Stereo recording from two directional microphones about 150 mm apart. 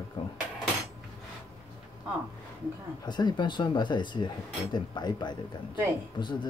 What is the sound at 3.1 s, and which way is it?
A man's voice, 30° left (ahead or behind).